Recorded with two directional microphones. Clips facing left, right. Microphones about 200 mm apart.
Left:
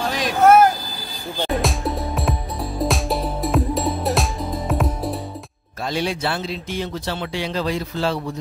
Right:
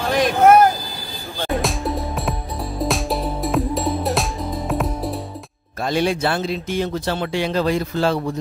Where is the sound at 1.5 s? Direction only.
Centre (ahead or behind).